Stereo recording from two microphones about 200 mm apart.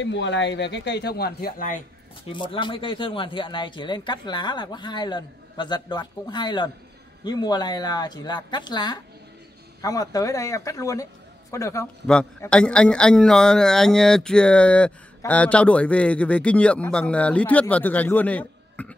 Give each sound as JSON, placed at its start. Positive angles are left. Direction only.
{"t": 0.0, "sound": "speech", "side_deg": 65}
{"t": 2.2, "sound": "a man's voice", "side_deg": 25}